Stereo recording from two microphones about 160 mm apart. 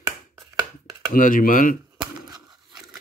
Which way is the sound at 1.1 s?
55° left (ahead or behind).